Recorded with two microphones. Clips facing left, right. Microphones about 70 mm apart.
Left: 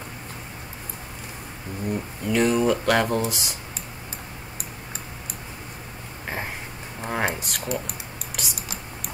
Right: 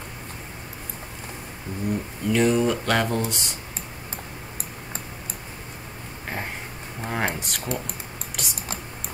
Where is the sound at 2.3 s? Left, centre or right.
Centre.